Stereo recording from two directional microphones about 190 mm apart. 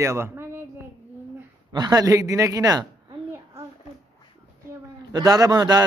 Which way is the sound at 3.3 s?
15° right (ahead or behind).